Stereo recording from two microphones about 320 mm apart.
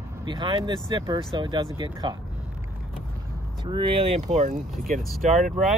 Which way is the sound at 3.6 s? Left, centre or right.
Centre.